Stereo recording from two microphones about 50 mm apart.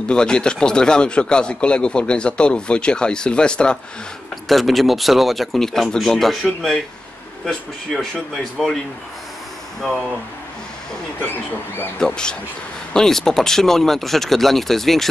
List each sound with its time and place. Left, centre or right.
0.1 s speech: centre
4.5 s speech: centre
11.2 s speech: left
12.0 s speech: centre